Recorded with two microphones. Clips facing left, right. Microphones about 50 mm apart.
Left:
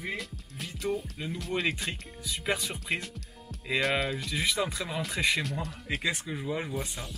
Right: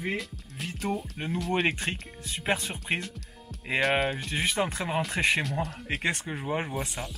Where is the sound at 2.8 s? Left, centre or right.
Centre.